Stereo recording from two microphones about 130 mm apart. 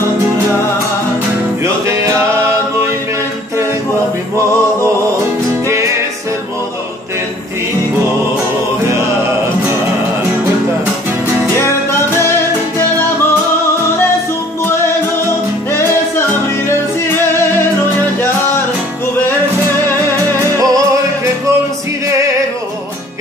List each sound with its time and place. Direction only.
1.6 s music: 25° right (ahead or behind)
11.5 s music: 20° left (ahead or behind)
15.7 s music: 20° left (ahead or behind)
20.3 s music: 25° right (ahead or behind)